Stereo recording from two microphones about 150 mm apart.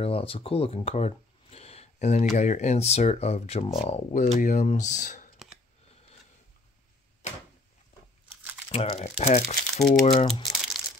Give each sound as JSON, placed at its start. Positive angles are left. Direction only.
{"t": 0.0, "sound": "speech", "side_deg": 40}
{"t": 8.6, "sound": "crumpling", "side_deg": 40}
{"t": 9.0, "sound": "speech", "side_deg": 45}